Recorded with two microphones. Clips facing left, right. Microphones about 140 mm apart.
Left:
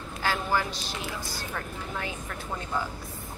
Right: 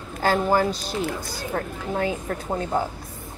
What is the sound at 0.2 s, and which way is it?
Speech, 45° right (ahead or behind).